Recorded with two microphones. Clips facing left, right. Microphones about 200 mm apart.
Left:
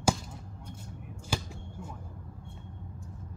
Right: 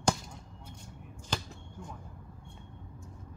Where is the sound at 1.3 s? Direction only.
10° left (ahead or behind).